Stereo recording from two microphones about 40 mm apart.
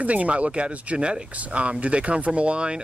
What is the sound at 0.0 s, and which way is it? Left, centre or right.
Speech, right.